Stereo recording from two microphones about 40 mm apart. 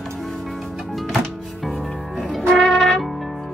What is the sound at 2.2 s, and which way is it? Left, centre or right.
Music, centre.